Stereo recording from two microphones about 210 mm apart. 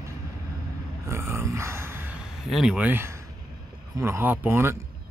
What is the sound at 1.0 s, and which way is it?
Speech, 10° right (ahead or behind).